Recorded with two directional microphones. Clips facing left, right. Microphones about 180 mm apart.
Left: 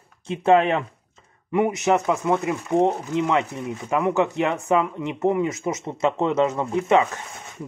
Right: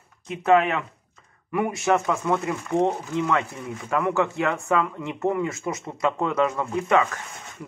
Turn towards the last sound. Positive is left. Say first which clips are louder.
# left 2 dB
turn(degrees=20)  # may be behind; listen again after turning